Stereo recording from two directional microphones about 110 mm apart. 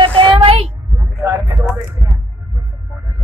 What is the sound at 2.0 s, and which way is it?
Speech, 20° left (ahead or behind).